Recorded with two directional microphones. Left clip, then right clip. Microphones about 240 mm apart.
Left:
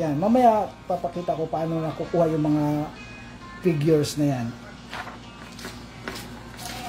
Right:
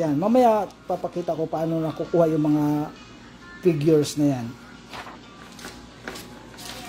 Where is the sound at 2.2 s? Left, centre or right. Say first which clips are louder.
Right 2 dB; right.